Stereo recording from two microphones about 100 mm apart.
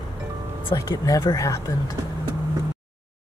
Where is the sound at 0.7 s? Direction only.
40° left (ahead or behind).